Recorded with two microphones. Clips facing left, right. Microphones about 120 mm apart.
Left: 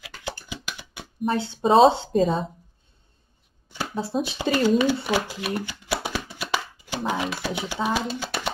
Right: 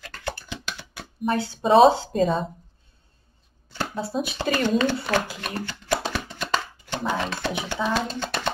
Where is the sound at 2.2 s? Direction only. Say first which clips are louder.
Left 1 dB; centre (ahead or behind).